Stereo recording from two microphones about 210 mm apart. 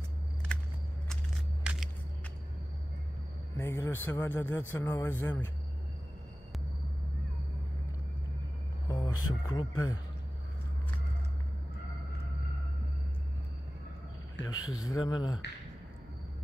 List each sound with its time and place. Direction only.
0.5 s a sound: 5° left (ahead or behind)
3.5 s speech: 10° left (ahead or behind)
8.8 s music: 20° left (ahead or behind)
9.3 s speech: 20° left (ahead or behind)
14.5 s speech: 75° left (ahead or behind)
14.9 s speech: 20° left (ahead or behind)